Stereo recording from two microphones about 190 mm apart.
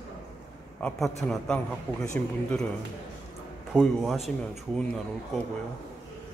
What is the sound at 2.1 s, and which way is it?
Speech, 5° left (ahead or behind).